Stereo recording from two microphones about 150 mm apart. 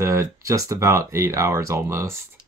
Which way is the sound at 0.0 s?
20° right (ahead or behind).